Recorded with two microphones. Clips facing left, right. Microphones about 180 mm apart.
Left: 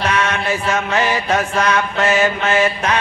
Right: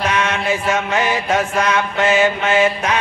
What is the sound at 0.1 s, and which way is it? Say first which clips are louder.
Mantra: even; 20° right (ahead or behind).